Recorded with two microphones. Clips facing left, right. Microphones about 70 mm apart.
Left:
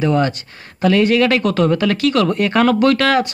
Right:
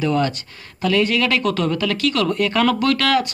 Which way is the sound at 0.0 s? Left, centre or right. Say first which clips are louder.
Left 3 dB; left.